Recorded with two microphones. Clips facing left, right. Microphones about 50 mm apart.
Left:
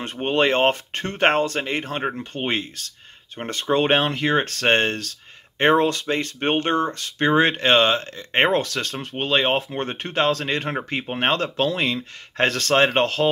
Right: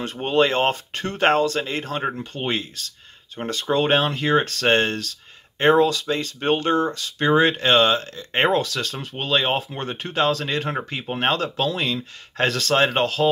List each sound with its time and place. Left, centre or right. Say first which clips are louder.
0.0 s speech: right 1 dB; left